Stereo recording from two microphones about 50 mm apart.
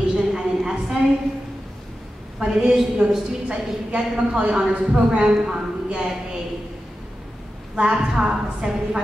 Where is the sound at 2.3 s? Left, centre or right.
Centre.